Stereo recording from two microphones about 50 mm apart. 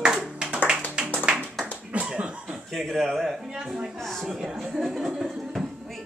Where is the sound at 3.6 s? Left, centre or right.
Centre.